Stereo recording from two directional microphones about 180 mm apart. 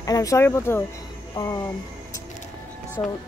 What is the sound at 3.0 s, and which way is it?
Speech, 15° left (ahead or behind).